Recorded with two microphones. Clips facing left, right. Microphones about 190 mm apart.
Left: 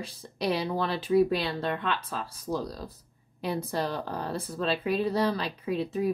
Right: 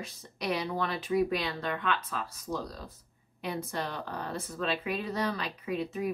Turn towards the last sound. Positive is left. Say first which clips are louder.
# left 4 dB
turn(degrees=30)  # may be behind; listen again after turning